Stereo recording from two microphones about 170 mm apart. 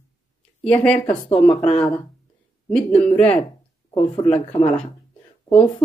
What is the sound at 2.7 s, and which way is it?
Speech, 5° left (ahead or behind).